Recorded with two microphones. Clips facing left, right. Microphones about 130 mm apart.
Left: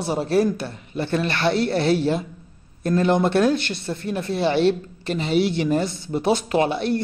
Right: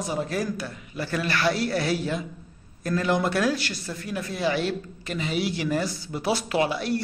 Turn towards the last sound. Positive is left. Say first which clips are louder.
# left 4 dB
turn(degrees=25)  # may be behind; listen again after turning